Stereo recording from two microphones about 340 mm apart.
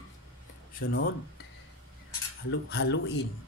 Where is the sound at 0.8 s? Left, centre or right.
Left.